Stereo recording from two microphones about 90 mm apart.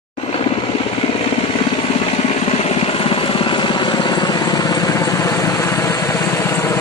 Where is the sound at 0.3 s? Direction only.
90° left.